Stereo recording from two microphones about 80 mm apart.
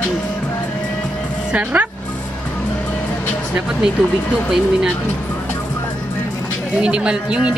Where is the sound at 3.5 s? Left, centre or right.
Centre.